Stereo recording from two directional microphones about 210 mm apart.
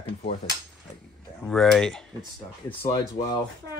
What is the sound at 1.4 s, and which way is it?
Speech, centre (ahead or behind).